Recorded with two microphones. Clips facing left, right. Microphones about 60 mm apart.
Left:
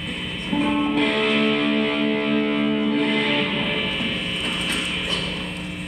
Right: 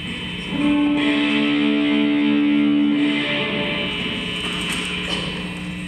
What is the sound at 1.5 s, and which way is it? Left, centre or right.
Music, left.